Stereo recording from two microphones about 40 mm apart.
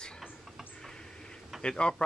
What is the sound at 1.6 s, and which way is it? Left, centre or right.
Speech, left.